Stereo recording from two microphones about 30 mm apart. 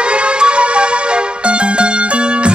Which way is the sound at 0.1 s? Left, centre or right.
Right.